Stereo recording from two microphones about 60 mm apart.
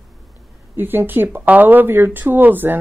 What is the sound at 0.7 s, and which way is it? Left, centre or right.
Speech, right.